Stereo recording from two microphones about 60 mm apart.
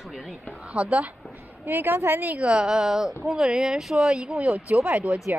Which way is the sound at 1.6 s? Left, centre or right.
Right.